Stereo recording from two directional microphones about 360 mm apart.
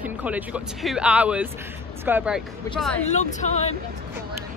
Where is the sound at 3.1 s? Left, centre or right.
Centre.